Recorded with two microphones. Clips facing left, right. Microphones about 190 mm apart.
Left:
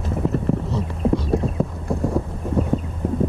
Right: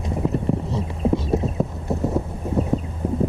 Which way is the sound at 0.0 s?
Centre (ahead or behind).